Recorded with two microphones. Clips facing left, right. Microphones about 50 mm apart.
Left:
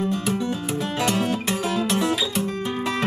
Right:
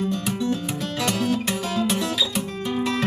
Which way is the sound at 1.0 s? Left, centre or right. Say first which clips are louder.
Right 1 dB; centre.